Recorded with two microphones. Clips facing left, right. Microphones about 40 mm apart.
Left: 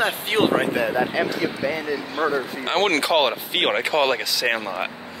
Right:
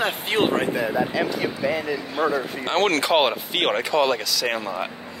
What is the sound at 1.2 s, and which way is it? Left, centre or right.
Speech, centre.